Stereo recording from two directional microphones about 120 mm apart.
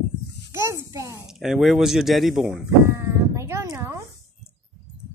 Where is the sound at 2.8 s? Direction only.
25° right (ahead or behind).